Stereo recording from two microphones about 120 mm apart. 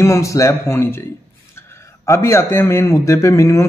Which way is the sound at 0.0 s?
25° left (ahead or behind).